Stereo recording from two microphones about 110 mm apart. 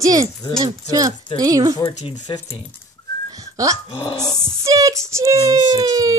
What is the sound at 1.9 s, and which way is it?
Speech, 90° left.